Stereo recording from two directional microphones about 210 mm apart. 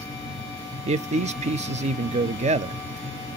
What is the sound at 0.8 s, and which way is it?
Speech, 30° right (ahead or behind).